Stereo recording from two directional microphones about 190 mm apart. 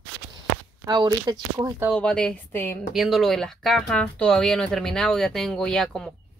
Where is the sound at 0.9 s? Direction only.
20° right (ahead or behind).